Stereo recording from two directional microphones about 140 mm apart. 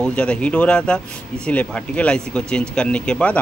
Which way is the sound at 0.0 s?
5° left (ahead or behind).